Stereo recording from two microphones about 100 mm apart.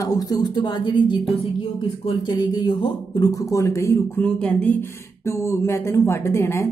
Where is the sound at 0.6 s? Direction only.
50° left (ahead or behind); by 3.9 s 30° left (ahead or behind).